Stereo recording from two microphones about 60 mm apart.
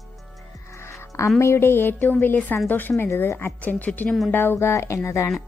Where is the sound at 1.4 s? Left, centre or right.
Left.